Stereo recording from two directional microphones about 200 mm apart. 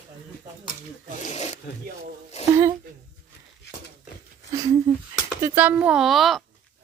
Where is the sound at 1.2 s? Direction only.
35° left (ahead or behind).